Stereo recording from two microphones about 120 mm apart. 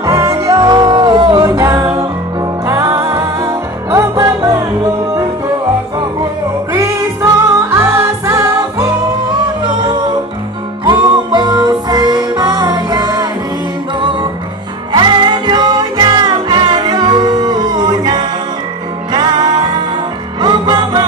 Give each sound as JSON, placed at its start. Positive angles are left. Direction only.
{"t": 0.0, "sound": "music", "side_deg": -30}
{"t": 6.7, "sound": "music", "side_deg": -25}
{"t": 10.9, "sound": "music", "side_deg": -35}
{"t": 14.9, "sound": "music", "side_deg": -40}